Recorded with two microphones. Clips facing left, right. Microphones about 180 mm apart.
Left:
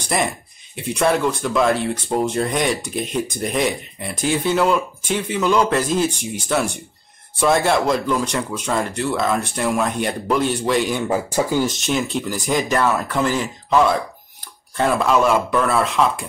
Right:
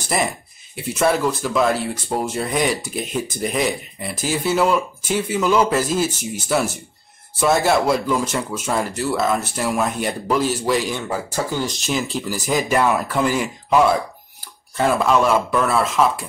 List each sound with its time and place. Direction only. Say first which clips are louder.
0.0 s a sound: even; centre (ahead or behind)
0.7 s speech: even; 5° right (ahead or behind)
11.1 s speech: left 4 dB; 15° left (ahead or behind)
11.6 s speech: left 2 dB; centre (ahead or behind)